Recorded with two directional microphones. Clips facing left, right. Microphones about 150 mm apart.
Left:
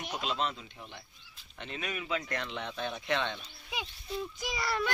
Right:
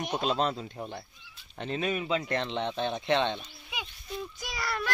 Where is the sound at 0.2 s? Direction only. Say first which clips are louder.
Right 5 dB; 40° right (ahead or behind).